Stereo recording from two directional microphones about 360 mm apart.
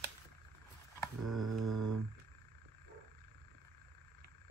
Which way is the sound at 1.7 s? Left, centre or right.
Right.